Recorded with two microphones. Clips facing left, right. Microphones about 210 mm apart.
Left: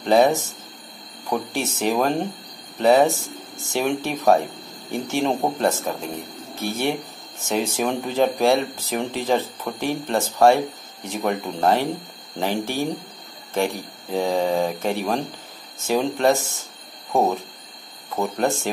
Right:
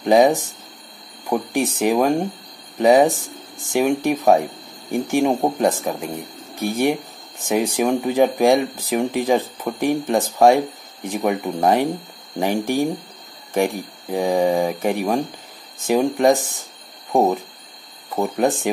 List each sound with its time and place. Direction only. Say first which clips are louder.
0.0 s speech: right 3 dB; 15° right (ahead or behind)